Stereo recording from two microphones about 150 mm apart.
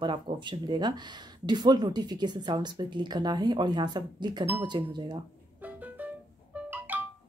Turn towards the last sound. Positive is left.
turn(degrees=-10)  # may be behind; listen again after turning